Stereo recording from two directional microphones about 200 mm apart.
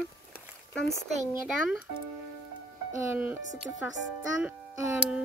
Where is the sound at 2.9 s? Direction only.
10° right (ahead or behind).